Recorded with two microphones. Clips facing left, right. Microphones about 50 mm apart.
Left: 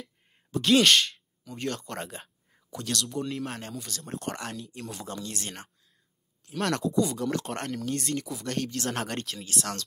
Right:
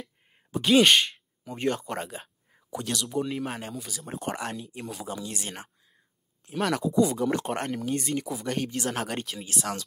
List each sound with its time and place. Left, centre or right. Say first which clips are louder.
0.5 s speech: right 1 dB; centre
2.0 s a sound: right 2 dB; centre
2.7 s speech: right 2 dB; centre
7.0 s speech: right 6 dB; centre
7.4 s speech: right 3 dB; centre
8.9 s speech: right 1 dB; centre